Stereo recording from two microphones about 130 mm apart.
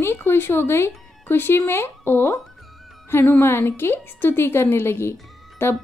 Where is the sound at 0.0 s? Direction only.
20° left (ahead or behind).